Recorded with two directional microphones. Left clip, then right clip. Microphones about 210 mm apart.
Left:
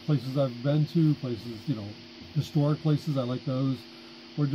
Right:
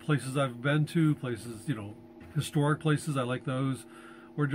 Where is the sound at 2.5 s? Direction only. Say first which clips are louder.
Even; 25° right (ahead or behind).